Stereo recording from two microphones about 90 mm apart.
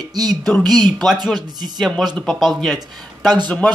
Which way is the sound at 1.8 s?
Centre (ahead or behind).